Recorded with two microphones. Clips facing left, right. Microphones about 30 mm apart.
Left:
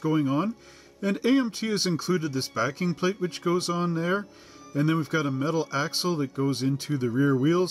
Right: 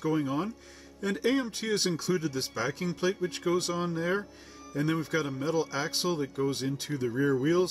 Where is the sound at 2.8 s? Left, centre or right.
Left.